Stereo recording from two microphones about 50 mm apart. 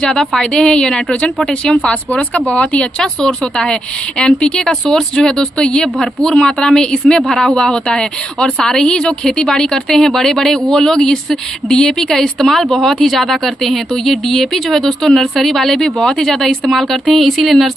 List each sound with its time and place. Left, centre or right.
0.0 s a woman's voice: centre
3.0 s a woman's voice: centre